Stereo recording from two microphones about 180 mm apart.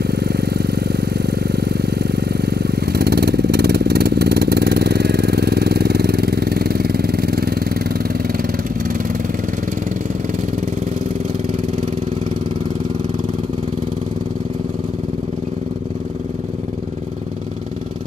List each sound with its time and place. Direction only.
0.0 s vehicle: 60° right (ahead or behind)